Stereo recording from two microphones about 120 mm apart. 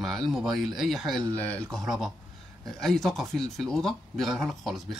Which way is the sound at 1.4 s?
10° left (ahead or behind).